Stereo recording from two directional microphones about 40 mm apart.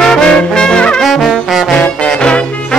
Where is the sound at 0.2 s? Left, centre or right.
Left.